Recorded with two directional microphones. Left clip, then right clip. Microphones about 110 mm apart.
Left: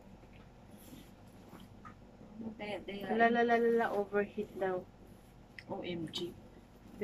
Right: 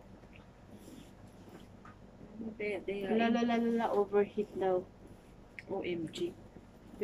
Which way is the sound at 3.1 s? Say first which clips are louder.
Left 4 dB; 20° right (ahead or behind).